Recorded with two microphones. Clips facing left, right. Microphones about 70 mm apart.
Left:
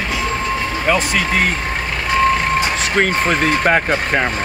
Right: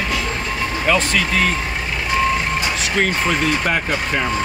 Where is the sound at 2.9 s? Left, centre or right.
Left.